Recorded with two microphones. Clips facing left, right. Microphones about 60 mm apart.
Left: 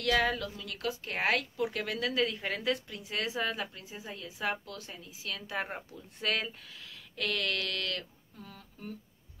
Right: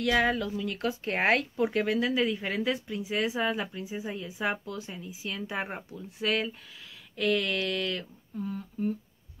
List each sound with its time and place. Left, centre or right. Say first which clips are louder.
0.0 s speech: right 3 dB; centre